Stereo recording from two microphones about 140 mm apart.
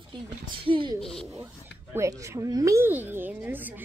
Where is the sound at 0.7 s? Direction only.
35° right (ahead or behind).